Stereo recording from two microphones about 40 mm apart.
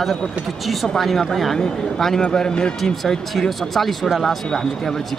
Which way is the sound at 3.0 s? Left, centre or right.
Centre.